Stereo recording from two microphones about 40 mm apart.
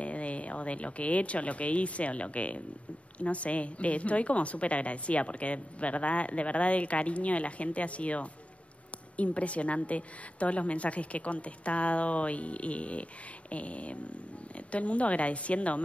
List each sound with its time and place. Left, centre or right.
0.0 s a woman's voice: left